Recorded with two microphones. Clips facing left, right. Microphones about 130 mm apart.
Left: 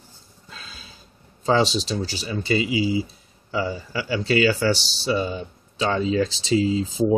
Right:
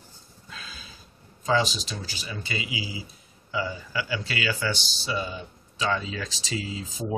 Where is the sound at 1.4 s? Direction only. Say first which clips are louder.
Left 5 dB; 30° left (ahead or behind).